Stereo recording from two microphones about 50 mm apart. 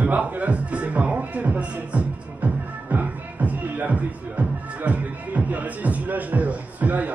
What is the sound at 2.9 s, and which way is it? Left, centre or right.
Music, right.